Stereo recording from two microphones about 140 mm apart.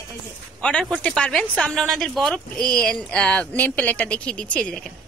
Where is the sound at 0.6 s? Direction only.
5° left (ahead or behind).